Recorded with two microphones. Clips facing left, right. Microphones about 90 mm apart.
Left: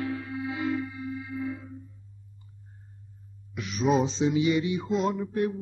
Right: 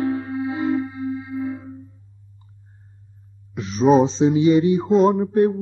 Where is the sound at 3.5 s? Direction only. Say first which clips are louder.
Right 9 dB; 30° right (ahead or behind).